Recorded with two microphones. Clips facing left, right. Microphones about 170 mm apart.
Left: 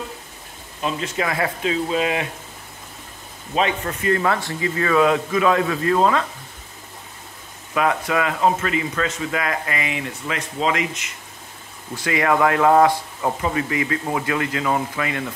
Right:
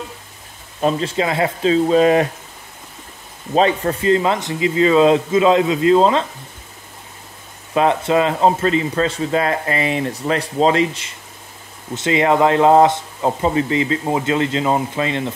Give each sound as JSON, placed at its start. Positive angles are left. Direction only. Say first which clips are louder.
{"t": 0.7, "sound": "speech", "louder": "right 6 dB", "side_deg": -40}
{"t": 3.5, "sound": "speech", "louder": "right 6 dB", "side_deg": -35}
{"t": 4.1, "sound": "speech", "louder": "right 3 dB", "side_deg": -20}
{"t": 7.7, "sound": "speech", "louder": "right 5 dB", "side_deg": -25}